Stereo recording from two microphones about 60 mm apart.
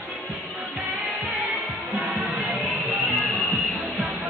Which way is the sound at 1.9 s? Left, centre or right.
Right.